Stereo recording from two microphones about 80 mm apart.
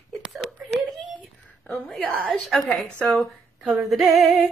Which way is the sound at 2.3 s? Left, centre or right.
Centre.